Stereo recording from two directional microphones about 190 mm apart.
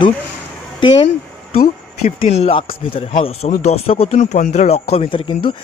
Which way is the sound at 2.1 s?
30° left (ahead or behind).